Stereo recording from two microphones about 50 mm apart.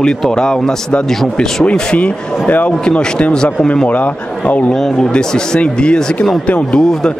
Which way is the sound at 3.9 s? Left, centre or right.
Left.